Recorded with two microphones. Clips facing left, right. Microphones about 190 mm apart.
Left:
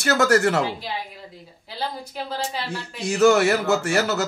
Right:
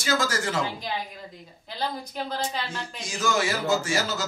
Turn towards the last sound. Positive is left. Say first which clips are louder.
# left 5 dB
turn(degrees=65)  # may be behind; listen again after turning